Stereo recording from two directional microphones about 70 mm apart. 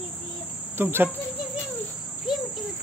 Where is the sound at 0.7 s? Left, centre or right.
Right.